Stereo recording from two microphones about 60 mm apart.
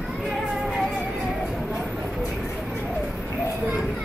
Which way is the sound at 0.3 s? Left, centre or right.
Centre.